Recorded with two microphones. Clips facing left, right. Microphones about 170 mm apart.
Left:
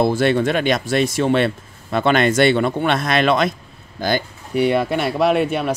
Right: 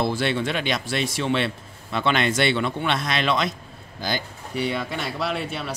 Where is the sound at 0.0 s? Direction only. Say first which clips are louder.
Left 7 dB; 50° left (ahead or behind).